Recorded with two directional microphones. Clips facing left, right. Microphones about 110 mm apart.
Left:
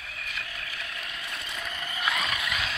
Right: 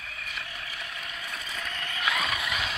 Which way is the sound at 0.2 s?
5° right (ahead or behind).